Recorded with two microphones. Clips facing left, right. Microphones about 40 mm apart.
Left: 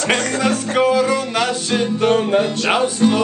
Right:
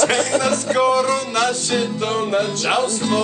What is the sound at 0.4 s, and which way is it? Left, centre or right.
Music, centre.